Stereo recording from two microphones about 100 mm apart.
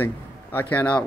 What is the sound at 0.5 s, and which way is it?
Music, 15° left (ahead or behind).